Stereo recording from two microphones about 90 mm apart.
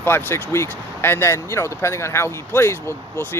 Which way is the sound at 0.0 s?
25° left (ahead or behind).